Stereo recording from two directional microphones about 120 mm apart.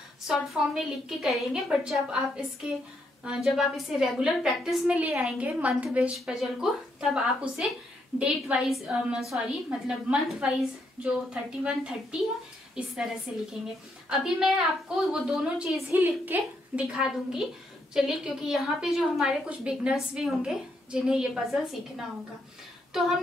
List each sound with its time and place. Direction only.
0.3 s a woman's voice: 5° right (ahead or behind)
15.9 s a woman's voice: 15° right (ahead or behind)
16.9 s a woman's voice: 5° right (ahead or behind)